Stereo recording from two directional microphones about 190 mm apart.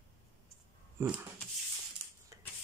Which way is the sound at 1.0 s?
15° right (ahead or behind).